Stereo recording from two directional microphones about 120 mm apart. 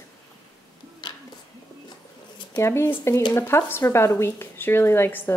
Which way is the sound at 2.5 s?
20° left (ahead or behind).